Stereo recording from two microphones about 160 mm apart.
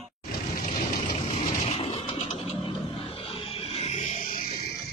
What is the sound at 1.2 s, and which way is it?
Vehicle, 40° left (ahead or behind).